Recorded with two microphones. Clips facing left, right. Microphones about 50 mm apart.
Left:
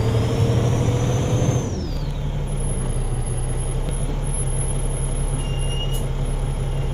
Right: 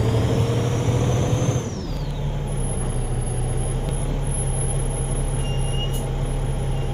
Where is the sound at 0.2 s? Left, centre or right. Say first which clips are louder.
Even; right.